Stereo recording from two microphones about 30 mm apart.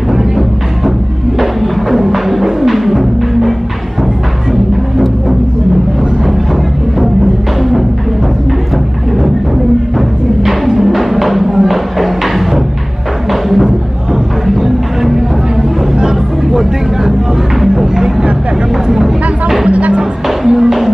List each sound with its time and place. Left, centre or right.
1.4 s music: centre
9.9 s music: centre
17.6 s a sound: centre
18.9 s chatter: centre
19.7 s music: right
20.2 s music: centre